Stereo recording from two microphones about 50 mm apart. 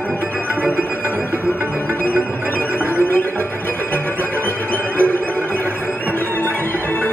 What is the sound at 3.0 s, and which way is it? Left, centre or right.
Music, left.